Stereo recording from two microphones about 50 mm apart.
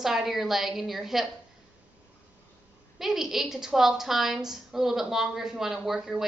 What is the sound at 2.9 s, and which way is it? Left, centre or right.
A woman's voice, centre.